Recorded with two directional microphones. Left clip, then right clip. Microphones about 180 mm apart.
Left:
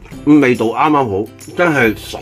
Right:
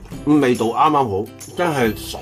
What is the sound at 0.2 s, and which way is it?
Speech, 20° left (ahead or behind).